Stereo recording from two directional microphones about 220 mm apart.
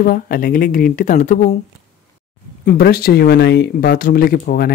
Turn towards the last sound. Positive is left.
turn(degrees=40)  # may be behind; listen again after turning